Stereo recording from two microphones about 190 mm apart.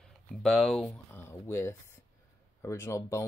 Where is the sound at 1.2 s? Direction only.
15° left (ahead or behind).